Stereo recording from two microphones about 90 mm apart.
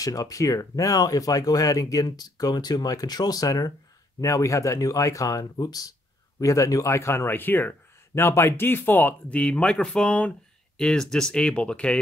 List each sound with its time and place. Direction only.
0.0 s a man's voice: 40° left (ahead or behind); by 12.0 s 10° left (ahead or behind)